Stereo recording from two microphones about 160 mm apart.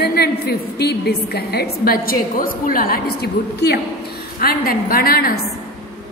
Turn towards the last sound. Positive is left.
turn(degrees=70)  # may be behind; listen again after turning